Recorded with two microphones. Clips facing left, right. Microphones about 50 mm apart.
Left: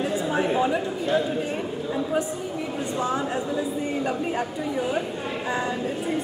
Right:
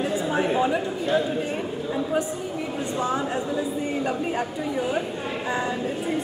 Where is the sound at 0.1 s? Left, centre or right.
Centre.